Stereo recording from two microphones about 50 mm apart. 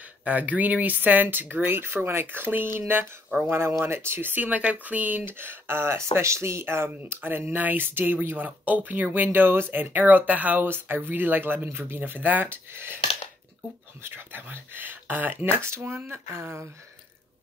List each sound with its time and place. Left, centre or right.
0.2 s speech: right
3.4 s speech: right
5.9 s speech: right
10.7 s speech: right
14.0 s speech: right
15.6 s speech: right